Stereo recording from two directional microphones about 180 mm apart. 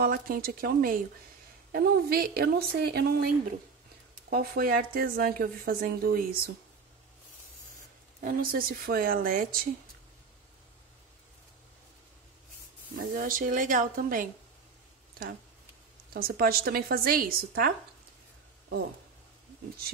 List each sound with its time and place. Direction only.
0.0 s a woman's voice: 55° right (ahead or behind)
8.2 s speech: 55° right (ahead or behind)
12.9 s speech: 50° right (ahead or behind)
16.1 s a woman's voice: 55° right (ahead or behind)